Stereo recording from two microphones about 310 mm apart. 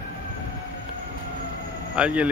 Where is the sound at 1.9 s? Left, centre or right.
Centre.